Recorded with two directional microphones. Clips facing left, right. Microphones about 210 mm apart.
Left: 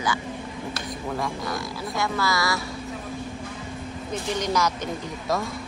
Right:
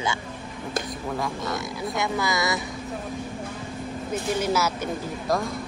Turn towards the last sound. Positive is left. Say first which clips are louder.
# right 1 dB
turn(degrees=-5)  # may be behind; listen again after turning